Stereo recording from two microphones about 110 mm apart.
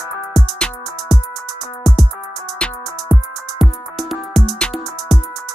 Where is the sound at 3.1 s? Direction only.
Centre (ahead or behind).